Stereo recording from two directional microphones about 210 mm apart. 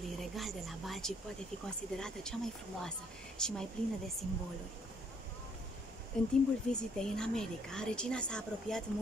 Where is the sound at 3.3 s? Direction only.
5° left (ahead or behind).